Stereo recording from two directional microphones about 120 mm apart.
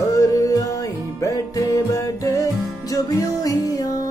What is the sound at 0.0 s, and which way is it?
Music, 30° left (ahead or behind).